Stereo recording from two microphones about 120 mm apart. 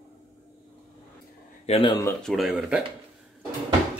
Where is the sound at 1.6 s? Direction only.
55° left (ahead or behind).